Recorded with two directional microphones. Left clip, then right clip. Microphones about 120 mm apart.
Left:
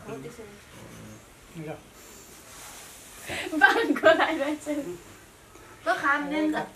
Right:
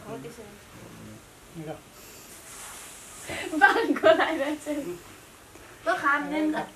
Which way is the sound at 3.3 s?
15° right (ahead or behind).